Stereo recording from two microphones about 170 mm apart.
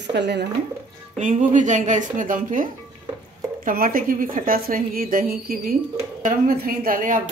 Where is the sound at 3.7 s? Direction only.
55° right (ahead or behind).